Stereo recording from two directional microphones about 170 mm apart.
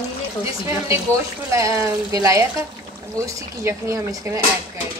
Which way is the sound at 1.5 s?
20° right (ahead or behind).